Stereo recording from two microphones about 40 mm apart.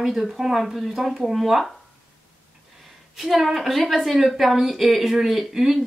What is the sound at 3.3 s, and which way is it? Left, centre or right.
Speech, centre.